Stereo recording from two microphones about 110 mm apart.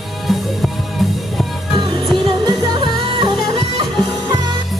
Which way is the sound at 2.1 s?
40° right (ahead or behind).